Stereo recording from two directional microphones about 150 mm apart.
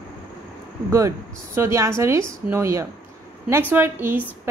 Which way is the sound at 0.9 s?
20° right (ahead or behind).